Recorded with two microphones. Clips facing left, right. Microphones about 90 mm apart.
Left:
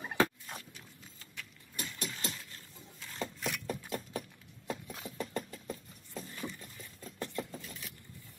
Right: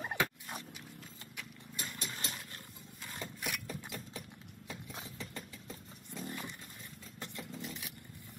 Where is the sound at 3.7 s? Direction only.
45° left (ahead or behind).